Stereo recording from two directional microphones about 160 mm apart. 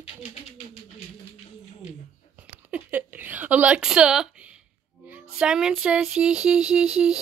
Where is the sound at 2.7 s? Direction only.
10° right (ahead or behind).